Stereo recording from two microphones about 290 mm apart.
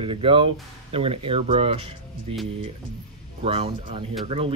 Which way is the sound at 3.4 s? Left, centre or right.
Centre.